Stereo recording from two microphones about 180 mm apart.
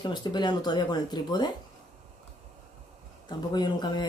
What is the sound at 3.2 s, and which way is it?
Speech, 25° left (ahead or behind).